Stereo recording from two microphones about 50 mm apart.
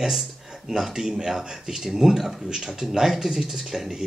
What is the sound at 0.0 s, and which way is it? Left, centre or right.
Speech, centre.